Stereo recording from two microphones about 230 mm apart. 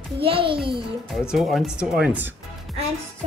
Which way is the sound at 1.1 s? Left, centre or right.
Centre.